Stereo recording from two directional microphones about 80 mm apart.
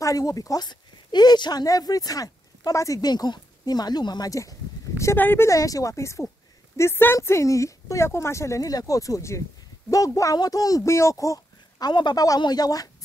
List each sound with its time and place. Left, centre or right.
0.0 s speech: left
3.1 s speech: left
4.3 s a sound: left
5.1 s speech: left
5.5 s speech: left
11.9 s speech: left